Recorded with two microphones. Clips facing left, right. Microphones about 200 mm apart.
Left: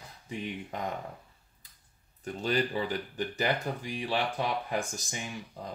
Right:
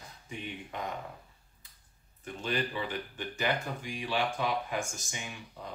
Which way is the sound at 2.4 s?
40° left (ahead or behind).